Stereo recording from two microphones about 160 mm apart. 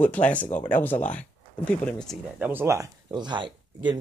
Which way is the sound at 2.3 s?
10° right (ahead or behind).